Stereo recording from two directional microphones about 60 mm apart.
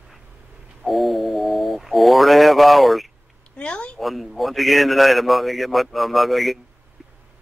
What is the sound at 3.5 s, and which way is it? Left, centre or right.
Speech, centre.